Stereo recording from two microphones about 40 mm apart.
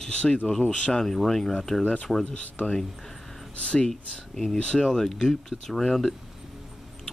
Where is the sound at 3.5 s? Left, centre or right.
Left.